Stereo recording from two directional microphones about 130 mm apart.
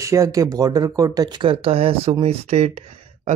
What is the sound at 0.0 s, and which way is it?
Speech, 25° right (ahead or behind).